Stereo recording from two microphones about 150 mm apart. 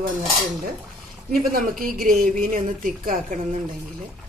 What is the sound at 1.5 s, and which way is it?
A woman's voice, 70° right (ahead or behind).